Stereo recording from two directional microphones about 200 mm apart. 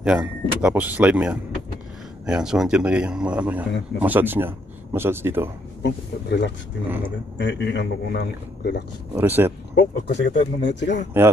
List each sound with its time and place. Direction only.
0.0 s speech: 5° right (ahead or behind)
5.8 s a man's voice: 60° left (ahead or behind)
9.1 s speech: 10° right (ahead or behind)
9.8 s a man's voice: 60° left (ahead or behind)